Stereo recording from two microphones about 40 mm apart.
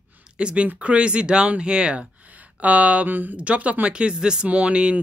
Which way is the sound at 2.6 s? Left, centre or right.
Right.